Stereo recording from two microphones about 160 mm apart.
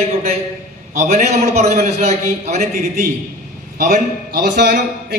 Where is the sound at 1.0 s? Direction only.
50° right (ahead or behind).